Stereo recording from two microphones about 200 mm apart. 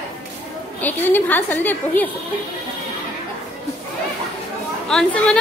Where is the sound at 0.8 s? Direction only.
10° left (ahead or behind).